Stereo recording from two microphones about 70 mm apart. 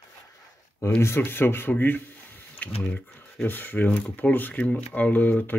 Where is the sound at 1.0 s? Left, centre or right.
Left.